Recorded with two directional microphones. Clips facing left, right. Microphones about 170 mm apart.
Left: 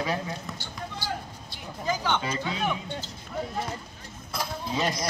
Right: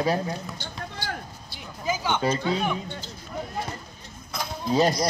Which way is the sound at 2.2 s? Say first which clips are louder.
Right 7 dB; 35° right (ahead or behind).